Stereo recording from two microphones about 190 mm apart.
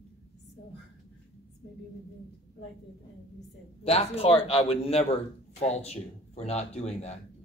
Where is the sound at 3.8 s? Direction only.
30° left (ahead or behind).